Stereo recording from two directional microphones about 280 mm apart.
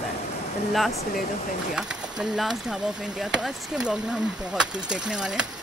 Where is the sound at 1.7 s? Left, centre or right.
Centre.